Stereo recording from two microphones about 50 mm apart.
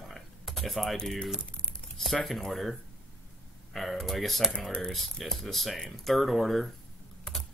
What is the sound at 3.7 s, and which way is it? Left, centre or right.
Speech, centre.